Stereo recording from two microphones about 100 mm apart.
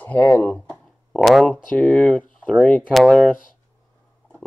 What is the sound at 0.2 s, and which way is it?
Speech, 20° left (ahead or behind).